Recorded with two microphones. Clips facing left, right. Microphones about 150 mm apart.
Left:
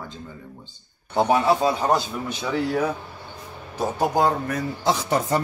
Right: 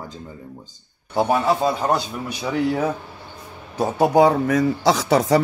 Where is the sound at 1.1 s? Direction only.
Centre (ahead or behind).